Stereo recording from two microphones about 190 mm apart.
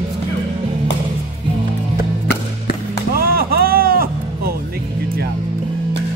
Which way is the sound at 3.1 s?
55° right (ahead or behind).